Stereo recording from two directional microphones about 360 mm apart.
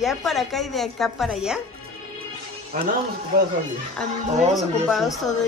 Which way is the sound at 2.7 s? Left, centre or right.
Right.